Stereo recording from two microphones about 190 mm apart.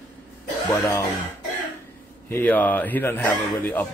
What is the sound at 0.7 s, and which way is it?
Speech, 15° left (ahead or behind).